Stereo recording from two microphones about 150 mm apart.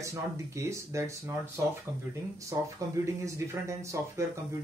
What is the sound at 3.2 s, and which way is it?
Speech, 20° right (ahead or behind).